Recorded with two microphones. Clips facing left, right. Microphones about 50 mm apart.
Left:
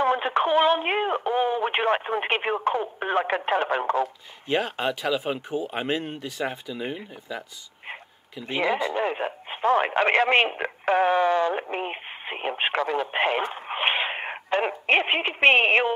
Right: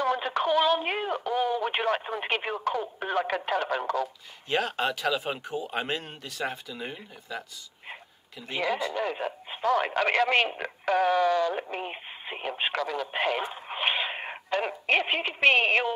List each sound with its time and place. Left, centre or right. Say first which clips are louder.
0.0 s speech: left 4 dB; left
8.5 s speech: left 4 dB; left